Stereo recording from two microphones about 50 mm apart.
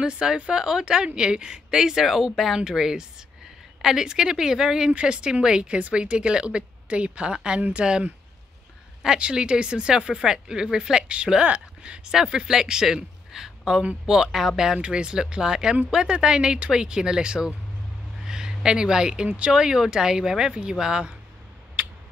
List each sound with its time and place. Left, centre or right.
0.0 s speech: centre
9.0 s speech: centre
19.2 s speech: right
19.5 s speech: centre